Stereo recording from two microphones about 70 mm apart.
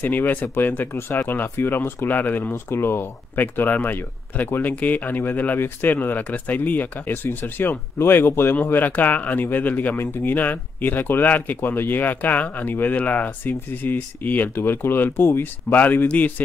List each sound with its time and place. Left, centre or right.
0.0 s speech: left